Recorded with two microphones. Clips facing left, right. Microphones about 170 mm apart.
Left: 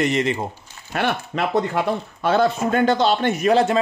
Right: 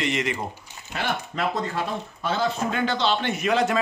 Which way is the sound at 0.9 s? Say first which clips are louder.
Left 5 dB; 60° left (ahead or behind).